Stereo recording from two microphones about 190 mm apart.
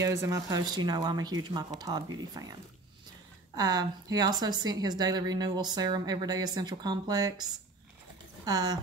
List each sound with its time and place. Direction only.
0.0 s speech: 15° right (ahead or behind)
3.5 s speech: 20° right (ahead or behind)
8.5 s speech: 20° right (ahead or behind)